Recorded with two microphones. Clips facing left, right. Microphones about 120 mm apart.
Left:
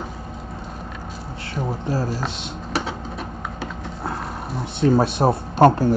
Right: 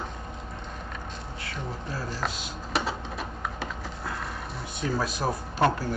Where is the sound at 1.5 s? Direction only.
30° left (ahead or behind).